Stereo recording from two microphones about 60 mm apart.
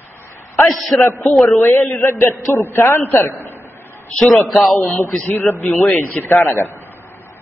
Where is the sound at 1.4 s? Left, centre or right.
Left.